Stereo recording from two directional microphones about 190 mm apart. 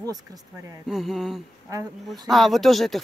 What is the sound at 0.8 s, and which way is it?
Speech, centre (ahead or behind).